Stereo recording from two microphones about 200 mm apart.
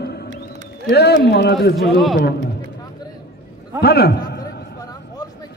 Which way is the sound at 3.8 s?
55° left (ahead or behind).